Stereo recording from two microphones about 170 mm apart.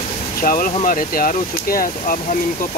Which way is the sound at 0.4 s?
60° left (ahead or behind).